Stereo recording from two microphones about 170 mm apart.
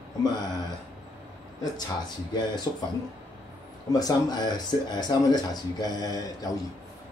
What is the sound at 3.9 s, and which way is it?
Speech, 20° left (ahead or behind).